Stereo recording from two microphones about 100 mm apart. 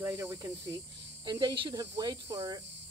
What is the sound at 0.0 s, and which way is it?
Speech, 30° right (ahead or behind).